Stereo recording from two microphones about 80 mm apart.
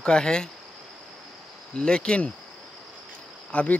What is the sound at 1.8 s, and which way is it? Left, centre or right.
Speech, centre.